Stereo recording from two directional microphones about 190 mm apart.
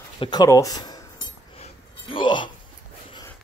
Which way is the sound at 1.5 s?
30° left (ahead or behind).